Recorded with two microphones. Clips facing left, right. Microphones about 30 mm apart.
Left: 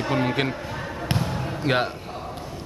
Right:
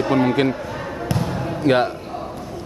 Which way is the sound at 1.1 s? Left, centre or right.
Centre.